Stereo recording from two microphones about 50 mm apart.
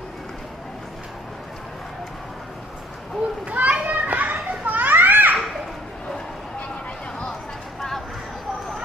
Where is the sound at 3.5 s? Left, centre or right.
Right.